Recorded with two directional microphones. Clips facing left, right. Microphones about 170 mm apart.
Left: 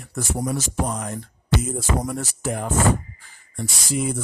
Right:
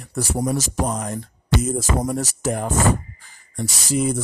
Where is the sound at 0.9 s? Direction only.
40° right (ahead or behind).